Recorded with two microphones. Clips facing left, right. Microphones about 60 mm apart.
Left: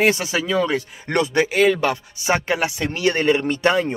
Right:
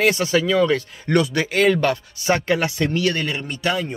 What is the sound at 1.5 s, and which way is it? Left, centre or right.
Speech, centre.